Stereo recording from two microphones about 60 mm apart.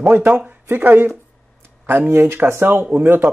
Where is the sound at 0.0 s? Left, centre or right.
Right.